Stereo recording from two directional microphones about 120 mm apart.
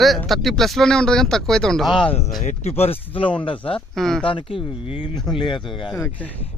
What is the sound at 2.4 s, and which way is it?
Speech, 80° left.